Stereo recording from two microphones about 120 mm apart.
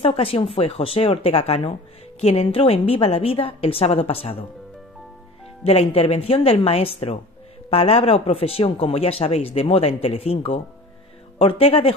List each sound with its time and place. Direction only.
0.0 s speech: 50° left (ahead or behind)
5.6 s speech: 55° left (ahead or behind)